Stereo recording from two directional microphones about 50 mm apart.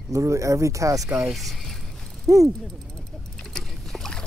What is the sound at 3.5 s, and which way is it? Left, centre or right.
Boat, centre.